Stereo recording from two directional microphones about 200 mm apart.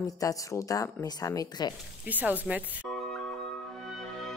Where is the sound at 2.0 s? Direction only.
10° right (ahead or behind).